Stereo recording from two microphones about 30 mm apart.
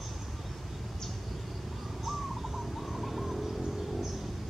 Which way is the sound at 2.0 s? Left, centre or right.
Centre.